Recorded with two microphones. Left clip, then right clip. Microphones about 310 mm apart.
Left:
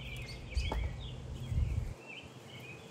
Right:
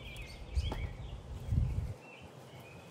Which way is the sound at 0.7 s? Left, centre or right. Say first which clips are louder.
Left 3 dB; centre.